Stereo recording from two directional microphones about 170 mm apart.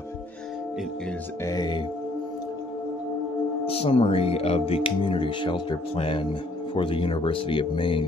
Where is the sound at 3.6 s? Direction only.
35° left (ahead or behind).